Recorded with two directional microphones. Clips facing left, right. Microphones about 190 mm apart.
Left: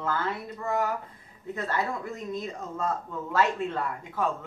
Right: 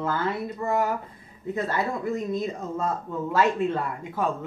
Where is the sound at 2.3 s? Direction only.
10° right (ahead or behind).